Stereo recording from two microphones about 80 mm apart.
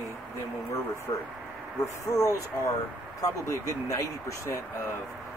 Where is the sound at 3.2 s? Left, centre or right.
Left.